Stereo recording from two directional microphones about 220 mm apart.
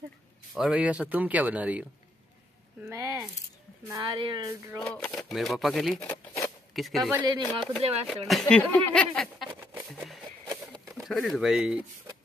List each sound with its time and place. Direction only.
0.6 s a woman's voice: 5° right (ahead or behind)
4.8 s speech: 5° left (ahead or behind)
7.2 s a woman's voice: 20° right (ahead or behind)
8.1 s speech: centre (ahead or behind)
9.5 s patter: 10° right (ahead or behind)
10.7 s speech: centre (ahead or behind)